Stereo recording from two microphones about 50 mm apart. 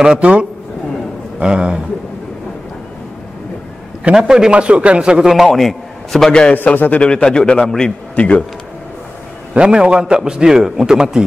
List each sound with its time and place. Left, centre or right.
0.2 s a man's voice: right
4.2 s a man's voice: centre
5.3 s a man's voice: centre
6.5 s a man's voice: left
7.0 s a man's voice: centre
8.2 s speech: left
9.5 s a man's voice: right